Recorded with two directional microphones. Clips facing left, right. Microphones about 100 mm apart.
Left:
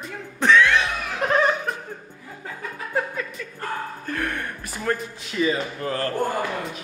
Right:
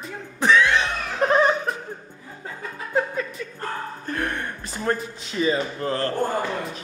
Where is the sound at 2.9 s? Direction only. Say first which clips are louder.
Right 3 dB; 25° right (ahead or behind).